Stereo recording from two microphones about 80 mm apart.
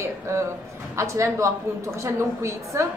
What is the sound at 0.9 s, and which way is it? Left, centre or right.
A man's voice, right.